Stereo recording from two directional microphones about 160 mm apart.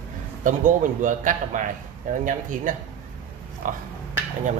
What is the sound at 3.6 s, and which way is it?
Speech, 55° right (ahead or behind).